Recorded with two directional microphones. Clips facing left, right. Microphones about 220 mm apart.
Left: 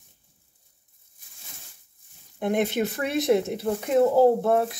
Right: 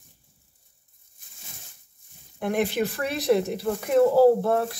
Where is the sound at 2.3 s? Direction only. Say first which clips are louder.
Left 1 dB; 20° left (ahead or behind).